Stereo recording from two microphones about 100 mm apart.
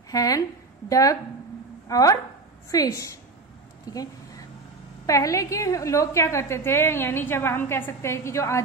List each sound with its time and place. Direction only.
0.1 s a woman's voice: 35° left (ahead or behind)